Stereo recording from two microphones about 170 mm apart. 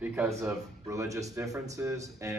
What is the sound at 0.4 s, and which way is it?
Speech, 15° right (ahead or behind).